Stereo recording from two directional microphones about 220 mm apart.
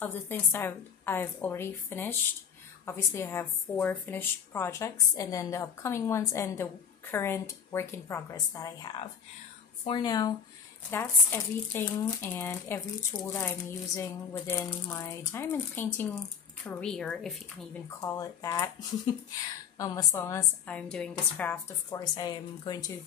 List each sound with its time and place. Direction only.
0.0 s speech: 10° left (ahead or behind)
17.8 s speech: 15° left (ahead or behind)
19.8 s speech: 15° left (ahead or behind)